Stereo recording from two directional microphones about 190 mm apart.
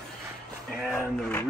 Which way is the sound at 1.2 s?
5° left (ahead or behind).